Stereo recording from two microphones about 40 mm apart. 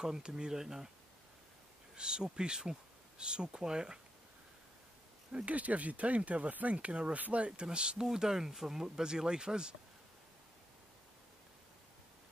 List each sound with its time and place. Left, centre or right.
0.0 s speech: centre
2.0 s speech: right
5.3 s speech: right
7.4 s speech: right